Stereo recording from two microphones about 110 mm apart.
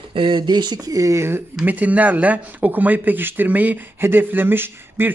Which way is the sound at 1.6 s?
15° right (ahead or behind).